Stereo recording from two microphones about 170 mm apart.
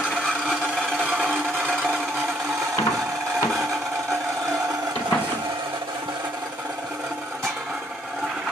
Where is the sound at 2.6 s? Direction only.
15° right (ahead or behind).